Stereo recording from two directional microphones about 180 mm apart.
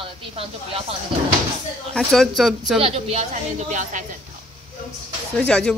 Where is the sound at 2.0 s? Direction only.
Centre (ahead or behind).